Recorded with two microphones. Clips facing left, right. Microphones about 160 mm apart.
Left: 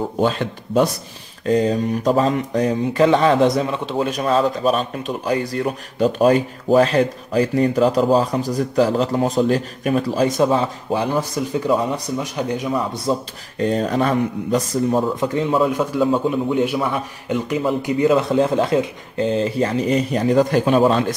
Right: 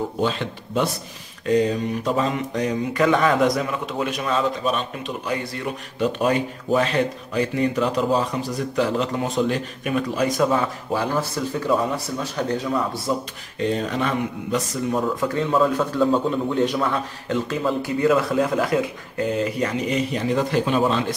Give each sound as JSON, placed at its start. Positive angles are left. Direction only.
{"t": 0.2, "sound": "speech", "side_deg": 45}
{"t": 1.4, "sound": "speech", "side_deg": 35}
{"t": 10.2, "sound": "speech", "side_deg": 25}
{"t": 13.1, "sound": "a man's voice", "side_deg": 25}
{"t": 13.6, "sound": "speech", "side_deg": 40}
{"t": 15.1, "sound": "a man's voice", "side_deg": 20}